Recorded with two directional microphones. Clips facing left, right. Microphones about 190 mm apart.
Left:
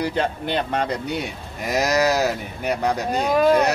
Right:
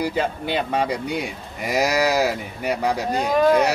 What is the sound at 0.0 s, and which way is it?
Speech, 5° right (ahead or behind).